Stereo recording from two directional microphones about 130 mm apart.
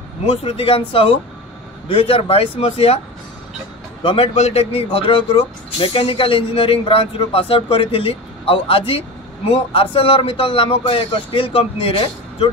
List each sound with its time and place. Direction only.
0.4 s speech: 45° left (ahead or behind)
4.0 s speech: 45° left (ahead or behind)